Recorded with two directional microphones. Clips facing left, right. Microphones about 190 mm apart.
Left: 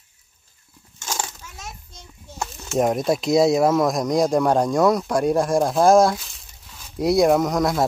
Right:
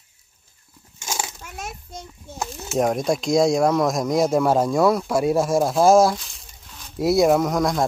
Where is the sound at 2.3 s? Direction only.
Centre (ahead or behind).